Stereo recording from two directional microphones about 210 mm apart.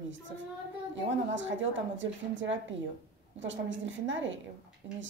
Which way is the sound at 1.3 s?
65° right (ahead or behind).